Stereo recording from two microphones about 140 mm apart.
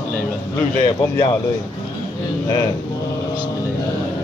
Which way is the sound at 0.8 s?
25° left (ahead or behind).